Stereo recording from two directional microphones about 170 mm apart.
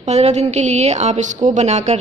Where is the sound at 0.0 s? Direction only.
40° right (ahead or behind).